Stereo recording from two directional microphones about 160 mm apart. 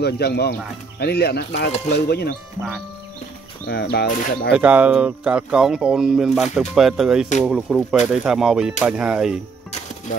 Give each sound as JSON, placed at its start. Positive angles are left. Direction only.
{"t": 0.0, "sound": "speech", "side_deg": 90}
{"t": 3.6, "sound": "speech", "side_deg": 85}
{"t": 4.6, "sound": "speech", "side_deg": -10}